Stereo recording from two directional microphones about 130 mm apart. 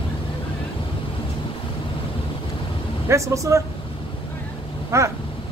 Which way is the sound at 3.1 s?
25° right (ahead or behind).